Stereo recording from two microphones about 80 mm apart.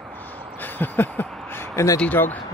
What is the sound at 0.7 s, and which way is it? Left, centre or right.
Speech, left.